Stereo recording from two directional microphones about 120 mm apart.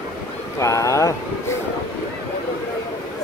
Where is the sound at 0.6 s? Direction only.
25° left (ahead or behind).